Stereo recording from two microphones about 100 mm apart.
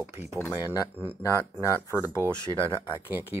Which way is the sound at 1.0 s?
20° left (ahead or behind).